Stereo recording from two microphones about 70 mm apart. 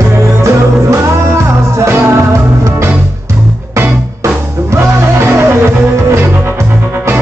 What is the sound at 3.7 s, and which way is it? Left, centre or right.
Music, right.